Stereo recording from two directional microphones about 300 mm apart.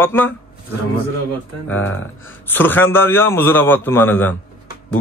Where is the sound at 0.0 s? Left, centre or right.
Centre.